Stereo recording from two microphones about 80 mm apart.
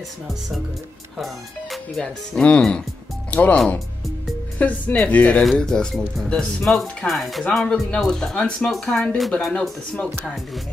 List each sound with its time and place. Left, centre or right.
1.1 s speech: centre
2.0 s speech: centre
4.6 s speech: centre
5.4 s speech: centre